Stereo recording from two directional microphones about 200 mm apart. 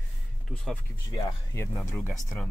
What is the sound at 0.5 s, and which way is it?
Speech, 5° left (ahead or behind).